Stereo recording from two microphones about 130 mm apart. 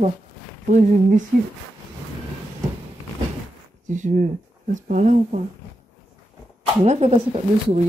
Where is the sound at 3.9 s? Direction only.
75° right (ahead or behind).